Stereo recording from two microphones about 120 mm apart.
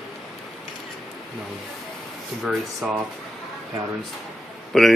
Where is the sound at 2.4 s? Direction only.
Centre (ahead or behind).